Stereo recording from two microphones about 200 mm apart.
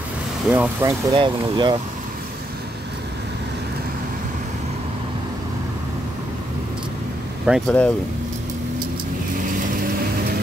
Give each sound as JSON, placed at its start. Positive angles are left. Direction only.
{"t": 0.5, "sound": "speech", "side_deg": -10}
{"t": 1.1, "sound": "speech", "side_deg": -25}
{"t": 7.4, "sound": "speech", "side_deg": -5}